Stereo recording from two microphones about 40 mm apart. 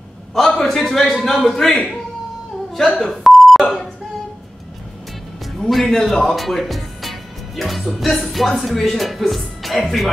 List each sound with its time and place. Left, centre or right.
0.3 s a man's voice: centre
2.9 s a man's voice: centre
3.3 s beep: centre
5.7 s a man's voice: centre